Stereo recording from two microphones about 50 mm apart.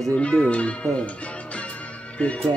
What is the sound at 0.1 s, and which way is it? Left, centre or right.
Speech, left.